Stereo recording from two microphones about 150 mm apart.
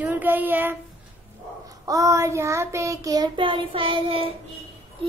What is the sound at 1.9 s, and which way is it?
Child singing, 20° right (ahead or behind).